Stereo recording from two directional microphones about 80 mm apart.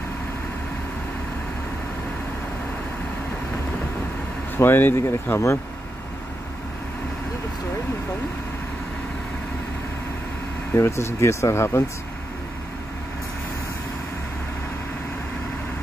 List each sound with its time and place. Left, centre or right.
4.6 s speech: left
10.7 s speech: left